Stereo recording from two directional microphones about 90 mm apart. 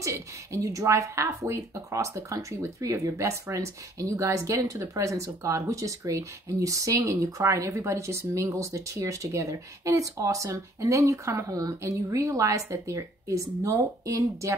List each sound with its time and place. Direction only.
0.0 s speech: 35° right (ahead or behind)